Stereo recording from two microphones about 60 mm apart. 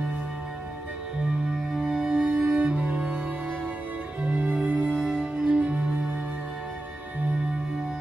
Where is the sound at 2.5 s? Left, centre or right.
Centre.